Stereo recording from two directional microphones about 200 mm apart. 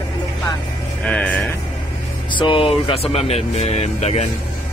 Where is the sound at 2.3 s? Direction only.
25° left (ahead or behind).